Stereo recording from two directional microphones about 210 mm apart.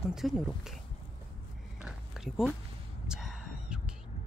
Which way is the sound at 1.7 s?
5° right (ahead or behind).